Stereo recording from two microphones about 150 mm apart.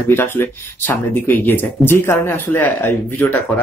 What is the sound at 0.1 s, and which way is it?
Speech, 15° left (ahead or behind).